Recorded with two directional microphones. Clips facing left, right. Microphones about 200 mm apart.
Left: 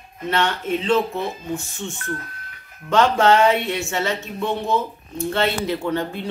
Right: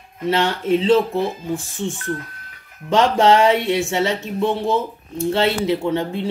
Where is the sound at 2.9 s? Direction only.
25° right (ahead or behind).